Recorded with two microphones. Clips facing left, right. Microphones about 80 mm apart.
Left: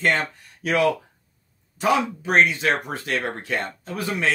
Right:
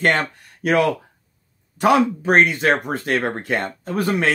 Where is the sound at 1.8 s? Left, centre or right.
Right.